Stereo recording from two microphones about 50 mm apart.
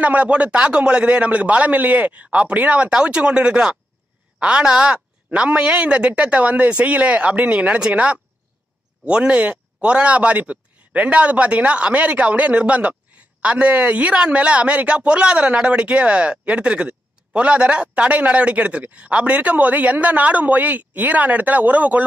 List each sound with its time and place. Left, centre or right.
0.0 s speech: right